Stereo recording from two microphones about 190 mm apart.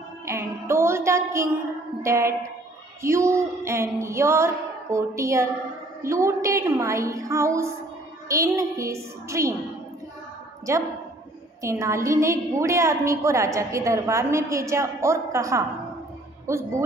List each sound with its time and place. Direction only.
0.2 s music: 15° right (ahead or behind)
2.0 s a woman's voice: 15° right (ahead or behind)
10.7 s a woman's voice: 15° right (ahead or behind)